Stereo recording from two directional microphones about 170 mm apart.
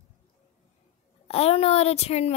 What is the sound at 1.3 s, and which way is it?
A child's voice, 35° left (ahead or behind).